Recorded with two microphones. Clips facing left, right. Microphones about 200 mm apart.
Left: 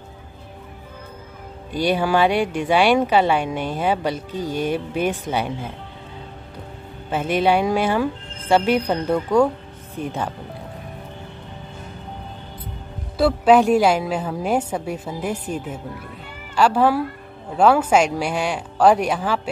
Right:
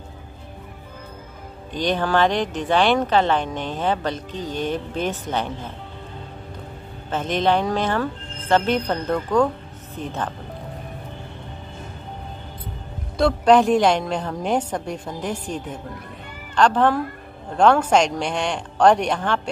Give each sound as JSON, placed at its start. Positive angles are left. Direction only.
{"t": 1.7, "sound": "speech", "side_deg": 10}
{"t": 7.1, "sound": "speech", "side_deg": 10}
{"t": 13.2, "sound": "speech", "side_deg": 5}